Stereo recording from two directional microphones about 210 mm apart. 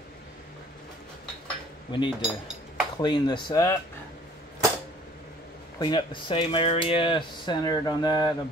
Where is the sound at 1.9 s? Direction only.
20° left (ahead or behind).